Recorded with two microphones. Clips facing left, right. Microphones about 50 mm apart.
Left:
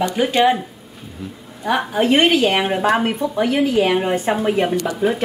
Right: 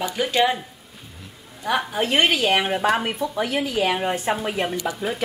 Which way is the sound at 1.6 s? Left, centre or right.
Centre.